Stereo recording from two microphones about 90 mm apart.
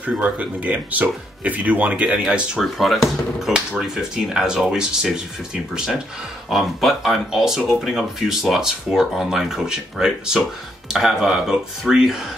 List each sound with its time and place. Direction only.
0.0 s speech: 15° right (ahead or behind)
6.5 s speech: centre (ahead or behind)